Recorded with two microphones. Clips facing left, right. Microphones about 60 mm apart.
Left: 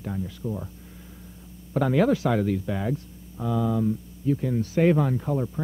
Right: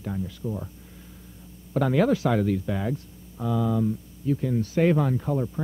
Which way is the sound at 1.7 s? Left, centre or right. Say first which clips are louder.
Even; centre.